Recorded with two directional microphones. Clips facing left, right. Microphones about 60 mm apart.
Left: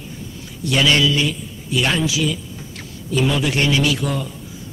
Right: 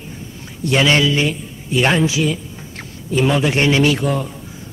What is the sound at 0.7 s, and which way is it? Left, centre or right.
A man's voice, right.